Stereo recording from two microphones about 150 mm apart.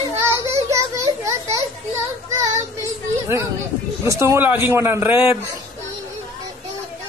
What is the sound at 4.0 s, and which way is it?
A man's voice, 20° right (ahead or behind).